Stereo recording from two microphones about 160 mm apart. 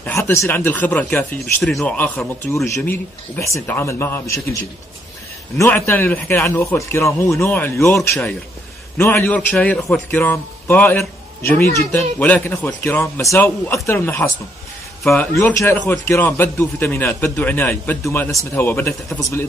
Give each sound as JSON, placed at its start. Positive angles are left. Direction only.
{"t": 0.0, "sound": "speech", "side_deg": 15}